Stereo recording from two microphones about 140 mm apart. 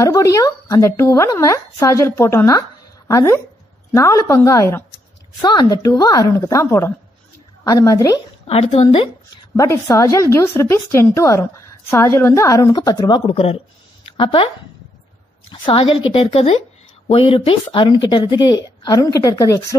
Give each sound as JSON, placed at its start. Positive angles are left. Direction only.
{"t": 0.0, "sound": "speech", "side_deg": 25}
{"t": 5.4, "sound": "speech", "side_deg": 30}
{"t": 8.5, "sound": "a woman's voice", "side_deg": 45}
{"t": 9.6, "sound": "speech", "side_deg": 20}
{"t": 14.0, "sound": "a sound", "side_deg": 35}
{"t": 15.5, "sound": "a woman's voice", "side_deg": 35}